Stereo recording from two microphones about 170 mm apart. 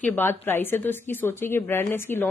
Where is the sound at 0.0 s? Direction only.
10° left (ahead or behind).